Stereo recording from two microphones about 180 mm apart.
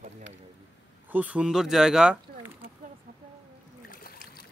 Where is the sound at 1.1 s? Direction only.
10° right (ahead or behind).